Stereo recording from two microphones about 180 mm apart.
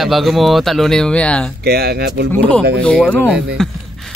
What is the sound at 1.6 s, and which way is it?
Speech, 60° right (ahead or behind).